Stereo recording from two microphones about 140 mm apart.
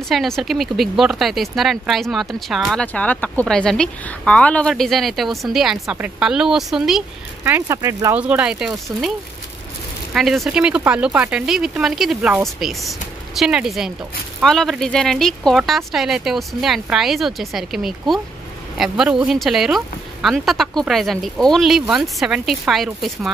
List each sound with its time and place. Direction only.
0.1 s speech: centre (ahead or behind)
7.4 s speech: 15° right (ahead or behind)
8.2 s speech: 10° right (ahead or behind)
10.1 s speech: centre (ahead or behind)